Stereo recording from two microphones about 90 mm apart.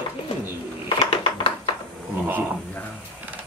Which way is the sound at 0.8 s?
85° left.